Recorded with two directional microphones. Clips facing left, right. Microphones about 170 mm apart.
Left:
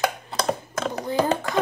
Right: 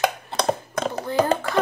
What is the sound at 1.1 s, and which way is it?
Speech, 15° left (ahead or behind).